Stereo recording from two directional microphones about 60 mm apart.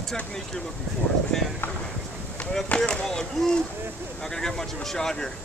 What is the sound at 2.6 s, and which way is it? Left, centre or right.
Speech, centre.